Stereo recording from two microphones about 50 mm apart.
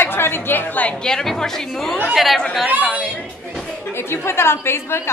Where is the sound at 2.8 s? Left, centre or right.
Centre.